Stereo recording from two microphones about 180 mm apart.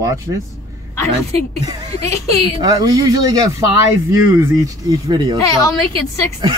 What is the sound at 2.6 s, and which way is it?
Speech, 20° right (ahead or behind).